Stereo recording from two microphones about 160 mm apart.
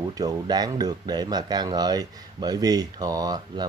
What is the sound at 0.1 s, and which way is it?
Speech, 25° right (ahead or behind).